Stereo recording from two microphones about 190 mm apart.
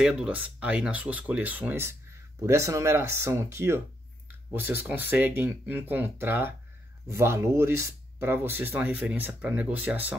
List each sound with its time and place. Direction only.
0.0 s speech: 5° right (ahead or behind)